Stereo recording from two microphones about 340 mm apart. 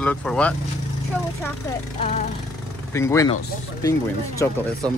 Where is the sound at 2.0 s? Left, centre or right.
Centre.